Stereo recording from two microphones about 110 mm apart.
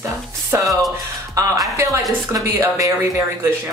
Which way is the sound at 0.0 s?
30° right (ahead or behind).